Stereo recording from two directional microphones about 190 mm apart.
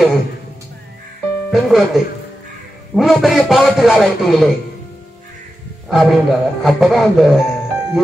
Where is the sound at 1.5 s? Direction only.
Centre (ahead or behind).